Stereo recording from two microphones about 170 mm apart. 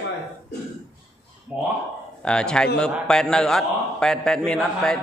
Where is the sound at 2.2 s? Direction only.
5° left (ahead or behind).